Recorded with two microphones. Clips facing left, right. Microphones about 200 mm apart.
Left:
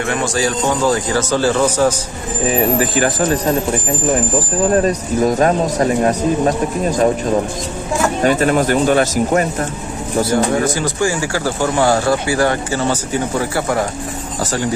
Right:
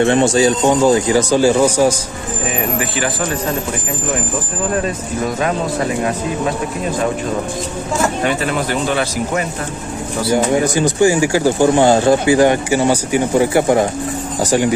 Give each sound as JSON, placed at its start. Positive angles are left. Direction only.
{"t": 0.0, "sound": "a man's voice", "side_deg": -25}
{"t": 2.5, "sound": "speech", "side_deg": 40}
{"t": 4.8, "sound": "speech", "side_deg": 40}
{"t": 8.2, "sound": "speech", "side_deg": 45}
{"t": 10.3, "sound": "a man's voice", "side_deg": -15}